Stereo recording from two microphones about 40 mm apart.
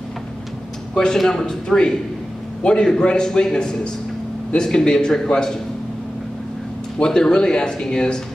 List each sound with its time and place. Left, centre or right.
0.9 s a man's voice: centre
7.0 s speech: centre